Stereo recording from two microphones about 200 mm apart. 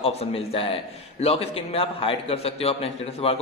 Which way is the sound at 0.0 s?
30° left (ahead or behind).